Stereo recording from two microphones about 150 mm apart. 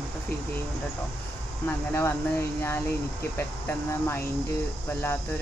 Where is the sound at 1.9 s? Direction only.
15° left (ahead or behind).